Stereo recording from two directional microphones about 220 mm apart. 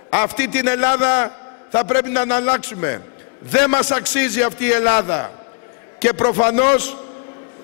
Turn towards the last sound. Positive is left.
turn(degrees=20)  # may be behind; listen again after turning